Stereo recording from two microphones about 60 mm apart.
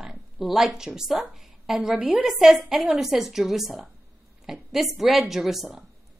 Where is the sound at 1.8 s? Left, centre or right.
Centre.